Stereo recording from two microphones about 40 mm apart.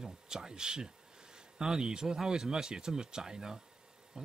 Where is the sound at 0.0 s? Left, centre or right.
Centre.